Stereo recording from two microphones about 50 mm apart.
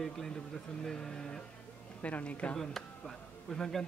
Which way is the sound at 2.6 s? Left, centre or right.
Centre.